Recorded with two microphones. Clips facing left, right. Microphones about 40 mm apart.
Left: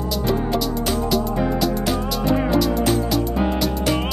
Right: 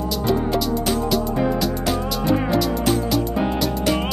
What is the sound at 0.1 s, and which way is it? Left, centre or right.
Music, centre.